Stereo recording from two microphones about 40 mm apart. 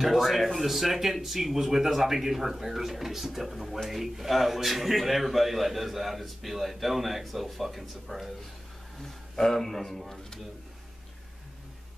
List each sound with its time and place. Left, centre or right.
0.0 s speech: centre
9.0 s a man's voice: centre